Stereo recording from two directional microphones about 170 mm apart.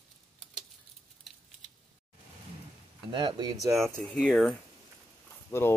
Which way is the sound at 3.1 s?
25° right (ahead or behind).